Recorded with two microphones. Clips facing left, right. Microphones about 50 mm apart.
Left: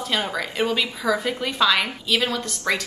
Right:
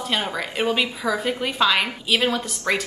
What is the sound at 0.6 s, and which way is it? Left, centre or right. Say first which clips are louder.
Speech: right 1 dB; right.